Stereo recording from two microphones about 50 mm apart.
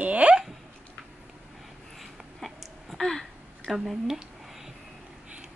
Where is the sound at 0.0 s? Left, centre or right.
Right.